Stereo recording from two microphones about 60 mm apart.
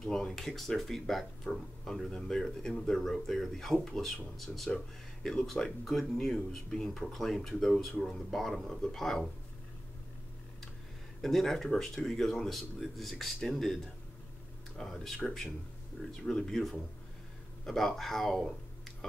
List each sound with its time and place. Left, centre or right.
0.0 s speech: centre
11.1 s speech: centre
14.8 s speech: centre